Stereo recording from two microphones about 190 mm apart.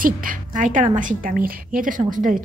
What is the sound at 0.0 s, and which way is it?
A woman's voice, 45° right (ahead or behind).